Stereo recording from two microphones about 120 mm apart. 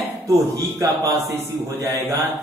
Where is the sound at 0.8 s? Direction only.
25° right (ahead or behind).